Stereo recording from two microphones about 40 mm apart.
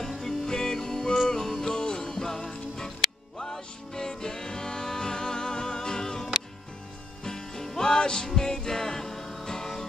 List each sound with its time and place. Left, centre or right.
0.2 s music: centre